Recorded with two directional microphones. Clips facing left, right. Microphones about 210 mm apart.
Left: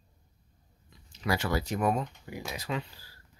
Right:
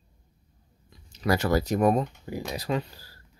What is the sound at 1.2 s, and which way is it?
Speech, 40° right (ahead or behind).